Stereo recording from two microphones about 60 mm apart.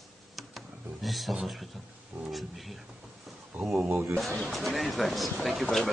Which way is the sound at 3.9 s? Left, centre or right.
Right.